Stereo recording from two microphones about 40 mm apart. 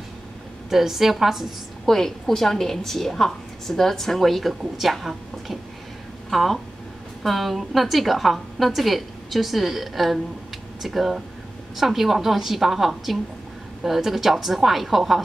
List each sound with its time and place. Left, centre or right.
0.7 s a woman's voice: centre
1.9 s a woman's voice: centre